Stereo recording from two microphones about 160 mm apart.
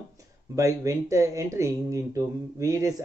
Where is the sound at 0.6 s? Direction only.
20° right (ahead or behind).